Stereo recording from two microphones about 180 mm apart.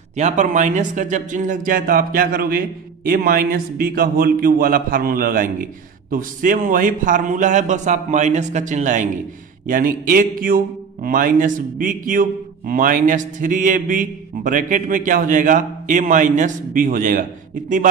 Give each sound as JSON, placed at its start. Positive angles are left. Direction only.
{"t": 0.1, "sound": "a man's voice", "side_deg": -40}